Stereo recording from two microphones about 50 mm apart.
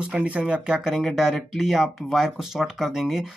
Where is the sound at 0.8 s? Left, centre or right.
Centre.